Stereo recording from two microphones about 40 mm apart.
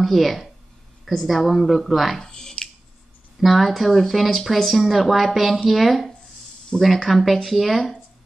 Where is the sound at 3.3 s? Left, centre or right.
Centre.